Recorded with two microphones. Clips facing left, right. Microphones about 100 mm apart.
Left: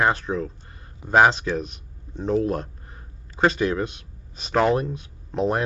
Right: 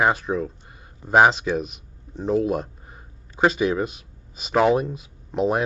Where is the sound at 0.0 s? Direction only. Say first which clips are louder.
Right 1 dB; 5° right (ahead or behind).